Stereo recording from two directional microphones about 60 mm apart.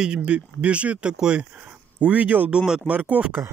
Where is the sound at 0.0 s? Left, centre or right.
Centre.